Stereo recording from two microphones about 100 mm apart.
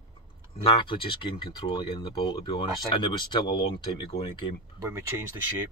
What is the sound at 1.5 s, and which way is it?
Speech, 45° left (ahead or behind).